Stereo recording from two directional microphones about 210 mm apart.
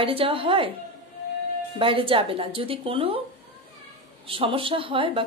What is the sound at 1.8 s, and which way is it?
Speech, 25° right (ahead or behind).